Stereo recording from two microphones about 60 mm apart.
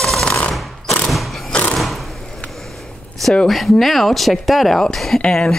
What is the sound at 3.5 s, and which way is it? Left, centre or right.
Speech, centre.